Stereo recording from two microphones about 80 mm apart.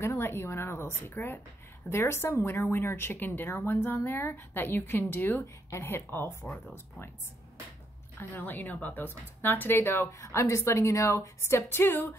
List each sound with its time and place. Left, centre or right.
0.0 s speech: left
8.2 s speech: left